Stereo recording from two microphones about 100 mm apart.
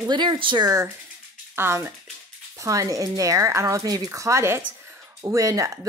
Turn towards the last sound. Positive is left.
turn(degrees=-35)  # may be behind; listen again after turning